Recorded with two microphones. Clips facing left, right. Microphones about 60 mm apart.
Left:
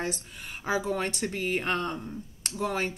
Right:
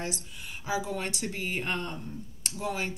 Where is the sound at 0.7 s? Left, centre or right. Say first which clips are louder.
Left 3 dB; left.